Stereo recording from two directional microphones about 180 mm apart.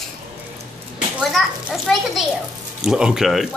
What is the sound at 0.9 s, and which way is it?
A child's voice, centre (ahead or behind).